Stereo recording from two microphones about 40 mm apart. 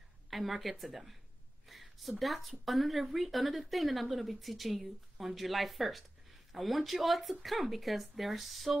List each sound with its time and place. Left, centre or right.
0.3 s speech: centre